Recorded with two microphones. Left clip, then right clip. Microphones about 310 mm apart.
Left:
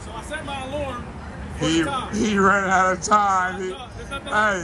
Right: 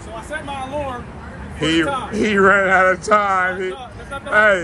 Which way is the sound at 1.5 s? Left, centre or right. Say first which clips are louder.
Right 4 dB; centre.